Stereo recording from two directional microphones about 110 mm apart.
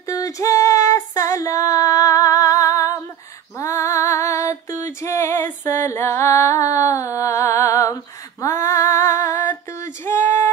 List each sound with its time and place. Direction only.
0.0 s female singing: 30° left (ahead or behind)